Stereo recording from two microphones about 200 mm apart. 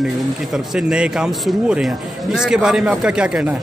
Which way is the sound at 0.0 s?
5° right (ahead or behind).